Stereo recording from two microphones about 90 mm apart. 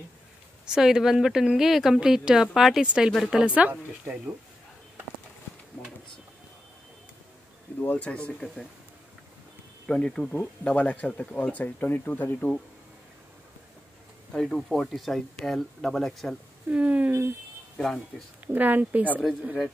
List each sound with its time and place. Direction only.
0.7 s a woman's voice: 5° right (ahead or behind)
7.8 s speech: 15° left (ahead or behind)
9.8 s speech: 10° left (ahead or behind)
14.3 s speech: 5° left (ahead or behind)
16.6 s a woman's voice: 15° right (ahead or behind)
17.7 s speech: 5° left (ahead or behind)
18.5 s a woman's voice: 20° right (ahead or behind)